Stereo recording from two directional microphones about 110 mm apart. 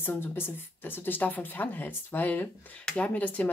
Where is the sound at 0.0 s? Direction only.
20° left (ahead or behind).